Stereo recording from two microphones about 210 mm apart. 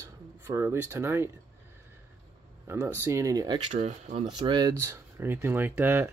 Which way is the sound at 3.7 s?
30° right (ahead or behind).